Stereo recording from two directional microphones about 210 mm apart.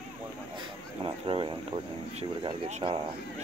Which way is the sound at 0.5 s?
25° right (ahead or behind).